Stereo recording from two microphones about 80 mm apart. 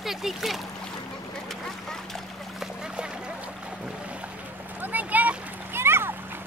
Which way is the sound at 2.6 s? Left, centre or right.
Centre.